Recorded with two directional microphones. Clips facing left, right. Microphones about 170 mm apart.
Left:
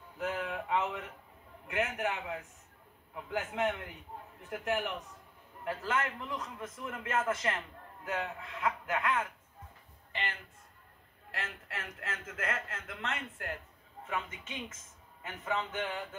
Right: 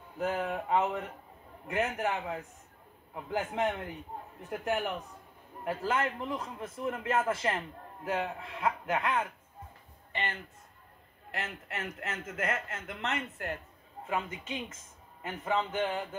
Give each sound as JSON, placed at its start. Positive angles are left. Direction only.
{"t": 0.2, "sound": "a man's voice", "side_deg": -35}
{"t": 11.3, "sound": "a man's voice", "side_deg": -25}
{"t": 15.2, "sound": "speech", "side_deg": -35}